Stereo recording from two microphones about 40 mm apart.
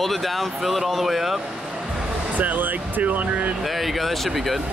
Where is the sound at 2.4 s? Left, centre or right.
Right.